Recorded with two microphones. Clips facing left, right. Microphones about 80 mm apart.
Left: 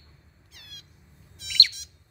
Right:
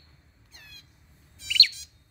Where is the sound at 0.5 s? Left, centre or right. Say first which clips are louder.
Left 1 dB; left.